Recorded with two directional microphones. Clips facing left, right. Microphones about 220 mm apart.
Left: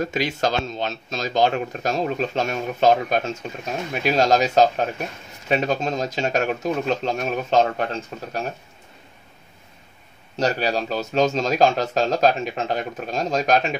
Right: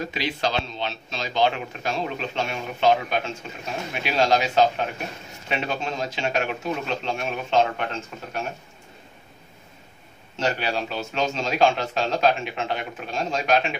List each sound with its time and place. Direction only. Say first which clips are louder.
0.0 s speech: left 4 dB; 45° left (ahead or behind)
10.3 s speech: left 4 dB; 40° left (ahead or behind)